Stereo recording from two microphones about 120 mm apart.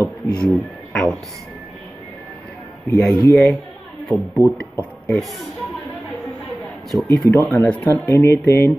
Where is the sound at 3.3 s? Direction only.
Centre (ahead or behind).